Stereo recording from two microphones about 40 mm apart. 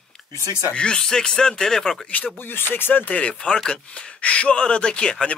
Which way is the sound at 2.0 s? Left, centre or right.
Left.